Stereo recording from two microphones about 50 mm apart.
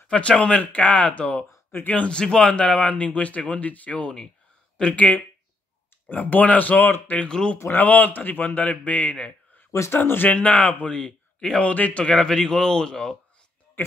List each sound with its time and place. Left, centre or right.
0.1 s a man's voice: left
1.7 s speech: left
2.0 s a man's voice: centre
7.2 s a man's voice: centre
7.7 s a man's voice: left
9.7 s speech: left
10.0 s speech: left
10.3 s a man's voice: left
11.6 s a man's voice: left
12.0 s a man's voice: centre